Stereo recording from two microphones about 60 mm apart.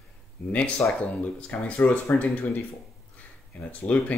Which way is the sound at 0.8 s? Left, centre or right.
Left.